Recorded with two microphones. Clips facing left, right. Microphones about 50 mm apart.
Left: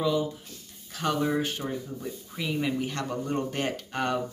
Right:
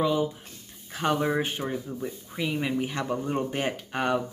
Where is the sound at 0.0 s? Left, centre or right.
Right.